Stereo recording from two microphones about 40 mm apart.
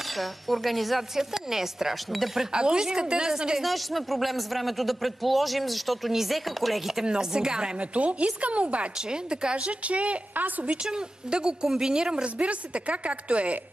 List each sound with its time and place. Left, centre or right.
0.0 s a man's voice: centre
2.5 s speech: right
3.6 s a man's voice: centre
7.1 s speech: centre
7.8 s speech: right
8.9 s speech: right
10.3 s a woman's voice: right
10.7 s speech: right
11.6 s speech: centre
11.9 s speech: right
12.4 s speech: right